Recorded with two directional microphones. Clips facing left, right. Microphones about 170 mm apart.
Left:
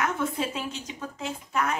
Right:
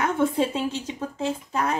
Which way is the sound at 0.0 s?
30° right (ahead or behind).